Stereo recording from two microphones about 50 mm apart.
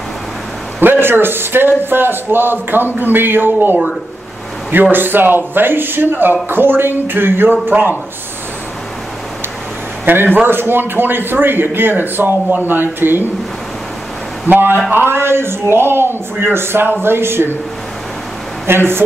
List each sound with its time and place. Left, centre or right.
0.7 s a man's voice: right
4.9 s a man's voice: right
10.0 s a man's voice: right
14.5 s a man's voice: right
18.7 s a man's voice: right